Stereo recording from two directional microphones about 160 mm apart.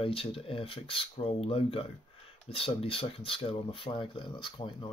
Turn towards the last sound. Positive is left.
turn(degrees=30)  # may be behind; listen again after turning